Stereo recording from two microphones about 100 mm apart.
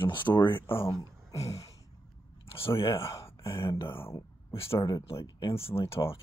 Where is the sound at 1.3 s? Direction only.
90° left.